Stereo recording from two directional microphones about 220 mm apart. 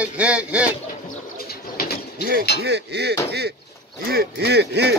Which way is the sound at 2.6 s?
50° right (ahead or behind).